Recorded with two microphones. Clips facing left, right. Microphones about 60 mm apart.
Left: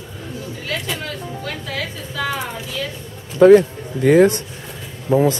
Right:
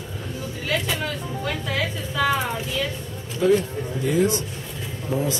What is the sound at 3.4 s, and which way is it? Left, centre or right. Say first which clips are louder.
Speech: left 10 dB; left.